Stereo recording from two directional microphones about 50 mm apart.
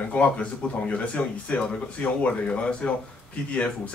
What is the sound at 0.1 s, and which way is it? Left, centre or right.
Speech, left.